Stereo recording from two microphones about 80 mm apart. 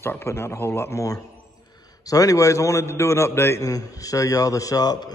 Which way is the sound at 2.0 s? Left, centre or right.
Left.